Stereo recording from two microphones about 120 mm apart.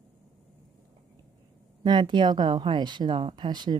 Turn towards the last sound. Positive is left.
turn(degrees=-40)  # may be behind; listen again after turning